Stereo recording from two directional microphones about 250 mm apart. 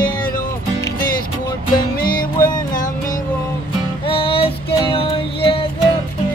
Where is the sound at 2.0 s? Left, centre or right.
Left.